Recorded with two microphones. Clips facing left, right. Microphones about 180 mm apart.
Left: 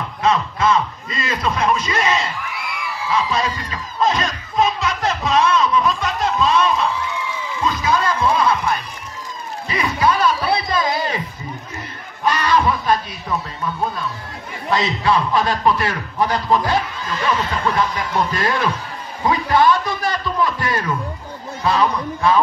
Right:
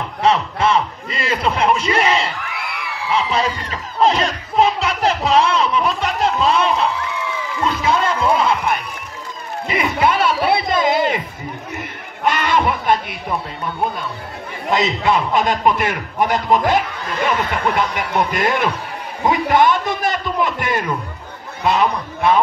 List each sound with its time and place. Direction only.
0.2 s a man's voice: 30° right (ahead or behind)
2.7 s music: 65° right (ahead or behind)
3.4 s crowd: 65° right (ahead or behind)
3.7 s speech: 30° right (ahead or behind)
4.7 s a sound: 30° right (ahead or behind)
5.5 s speech: 30° right (ahead or behind)
7.8 s a man's voice: 25° right (ahead or behind)
12.3 s a man's voice: 25° right (ahead or behind)
14.7 s a man's voice: 20° right (ahead or behind)